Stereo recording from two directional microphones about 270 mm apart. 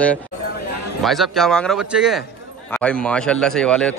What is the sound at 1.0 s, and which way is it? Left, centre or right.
A man's voice, centre.